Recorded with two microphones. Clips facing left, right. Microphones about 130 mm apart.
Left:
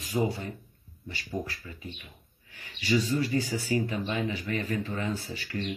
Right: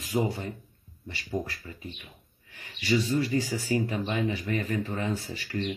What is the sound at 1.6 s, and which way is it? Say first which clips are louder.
Speech: right 1 dB; 35° right (ahead or behind).